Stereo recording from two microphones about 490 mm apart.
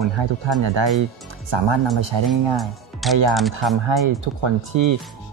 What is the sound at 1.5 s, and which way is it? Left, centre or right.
Speech, right.